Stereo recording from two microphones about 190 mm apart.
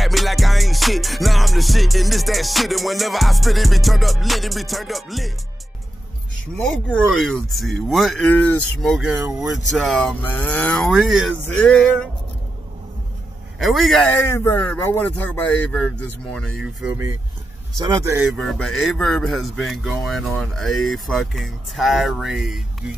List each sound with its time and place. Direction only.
0.0 s music: centre (ahead or behind)
6.6 s speech: centre (ahead or behind)
13.6 s speech: centre (ahead or behind)
14.2 s speech: 10° left (ahead or behind)
16.8 s a man's voice: 15° right (ahead or behind)
18.4 s speech: centre (ahead or behind)